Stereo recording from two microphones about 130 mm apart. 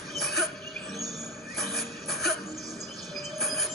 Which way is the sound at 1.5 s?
Centre (ahead or behind).